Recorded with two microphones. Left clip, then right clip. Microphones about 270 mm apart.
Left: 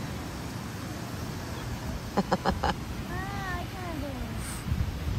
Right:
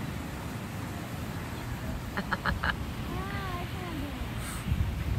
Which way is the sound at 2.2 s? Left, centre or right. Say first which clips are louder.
Left 4 dB; left.